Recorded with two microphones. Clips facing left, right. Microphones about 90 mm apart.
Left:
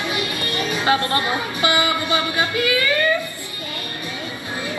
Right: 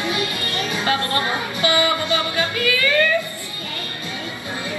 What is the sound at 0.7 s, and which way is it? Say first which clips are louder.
Music: left 3 dB; 25° left (ahead or behind).